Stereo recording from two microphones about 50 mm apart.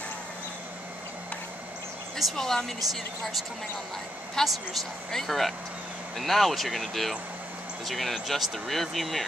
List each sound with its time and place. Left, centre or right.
2.3 s speech: centre
2.8 s speech: centre
4.4 s speech: centre